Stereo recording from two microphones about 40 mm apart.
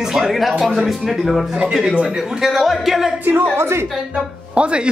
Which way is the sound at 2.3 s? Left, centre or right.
Centre.